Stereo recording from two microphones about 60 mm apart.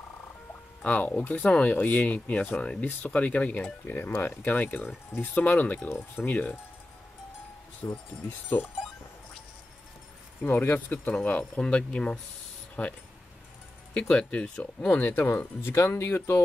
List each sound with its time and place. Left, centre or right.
0.5 s speech: left
7.8 s speech: left
8.5 s speech: left
10.5 s speech: left
13.9 s speech: centre
14.9 s speech: left